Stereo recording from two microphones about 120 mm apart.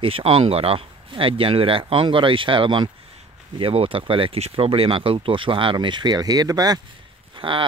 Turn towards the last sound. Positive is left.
turn(degrees=-45)  # may be behind; listen again after turning